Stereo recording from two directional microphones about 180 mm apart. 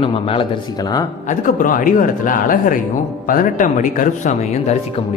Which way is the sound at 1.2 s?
50° left (ahead or behind).